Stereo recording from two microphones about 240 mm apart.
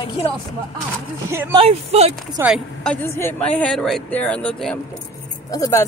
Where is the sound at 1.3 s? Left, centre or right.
Centre.